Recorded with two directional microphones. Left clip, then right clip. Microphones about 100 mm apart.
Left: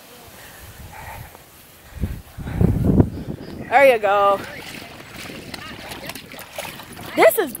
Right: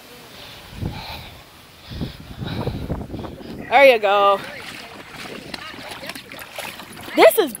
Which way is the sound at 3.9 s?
20° right (ahead or behind).